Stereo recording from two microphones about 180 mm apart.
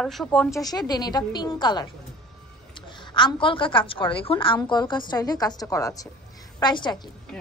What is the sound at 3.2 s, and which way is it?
A woman's voice, 25° left (ahead or behind).